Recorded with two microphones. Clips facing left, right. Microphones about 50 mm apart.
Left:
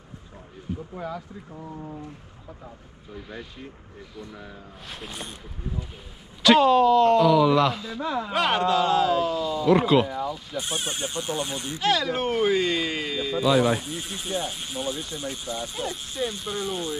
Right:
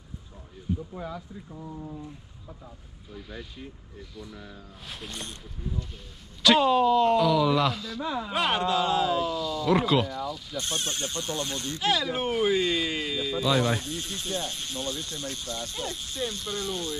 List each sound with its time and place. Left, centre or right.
3.2 s speech: centre
6.8 s speech: centre
8.0 s speech: left
9.3 s speech: left
9.7 s speech: centre
10.0 s speech: left
12.0 s speech: left
12.3 s speech: centre